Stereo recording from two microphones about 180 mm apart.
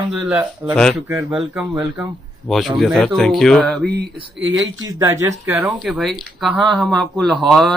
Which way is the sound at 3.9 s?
65° right (ahead or behind).